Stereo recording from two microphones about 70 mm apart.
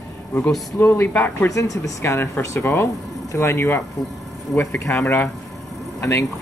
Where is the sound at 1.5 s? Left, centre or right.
Left.